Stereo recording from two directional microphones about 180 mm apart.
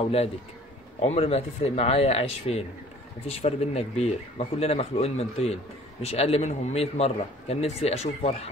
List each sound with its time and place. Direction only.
0.0 s a man's voice: 35° left (ahead or behind)